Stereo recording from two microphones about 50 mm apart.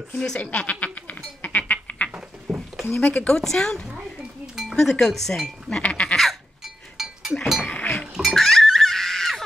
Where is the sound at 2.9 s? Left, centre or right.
Left.